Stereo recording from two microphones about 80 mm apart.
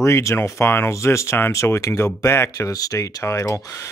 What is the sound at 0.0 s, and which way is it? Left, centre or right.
Speech, left.